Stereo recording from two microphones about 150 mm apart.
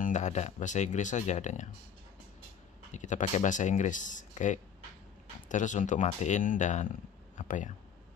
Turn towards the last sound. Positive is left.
turn(degrees=55)  # may be behind; listen again after turning